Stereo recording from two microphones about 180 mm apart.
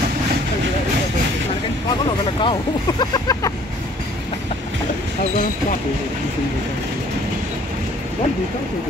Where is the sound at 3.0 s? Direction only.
20° left (ahead or behind).